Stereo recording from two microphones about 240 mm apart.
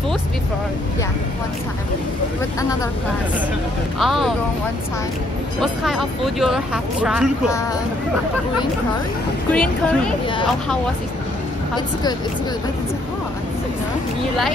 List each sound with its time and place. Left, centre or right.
4.0 s speech: centre
5.6 s speech: centre
9.5 s speech: centre
11.7 s speech: centre